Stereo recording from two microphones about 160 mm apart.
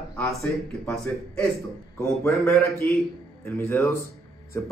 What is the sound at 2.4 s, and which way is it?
Speech, 15° left (ahead or behind).